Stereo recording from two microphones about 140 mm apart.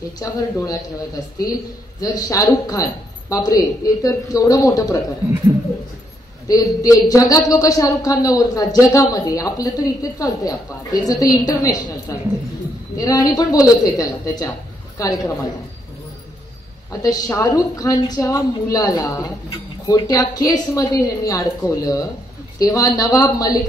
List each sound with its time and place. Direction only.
0.2 s a man's voice: 25° left (ahead or behind)
6.4 s a man's voice: 25° left (ahead or behind)
17.0 s a man's voice: 25° left (ahead or behind)